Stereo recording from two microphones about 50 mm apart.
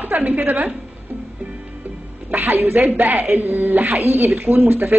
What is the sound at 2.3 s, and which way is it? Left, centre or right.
Speech, right.